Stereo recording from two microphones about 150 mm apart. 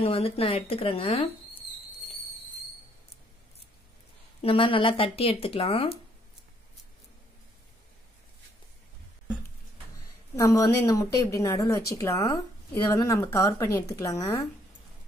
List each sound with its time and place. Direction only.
0.0 s speech: 40° left (ahead or behind)
4.4 s speech: 40° left (ahead or behind)
10.3 s a woman's voice: 20° left (ahead or behind)